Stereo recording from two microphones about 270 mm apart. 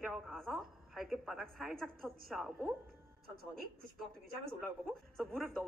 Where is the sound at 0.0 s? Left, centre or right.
Centre.